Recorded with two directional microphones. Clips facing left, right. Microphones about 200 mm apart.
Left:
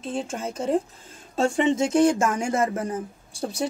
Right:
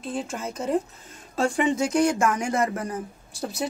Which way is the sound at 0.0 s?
25° left (ahead or behind).